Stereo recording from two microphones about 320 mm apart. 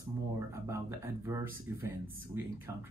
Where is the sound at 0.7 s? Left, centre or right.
Centre.